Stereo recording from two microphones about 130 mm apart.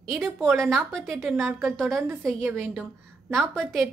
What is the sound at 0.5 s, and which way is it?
A woman's voice, centre (ahead or behind).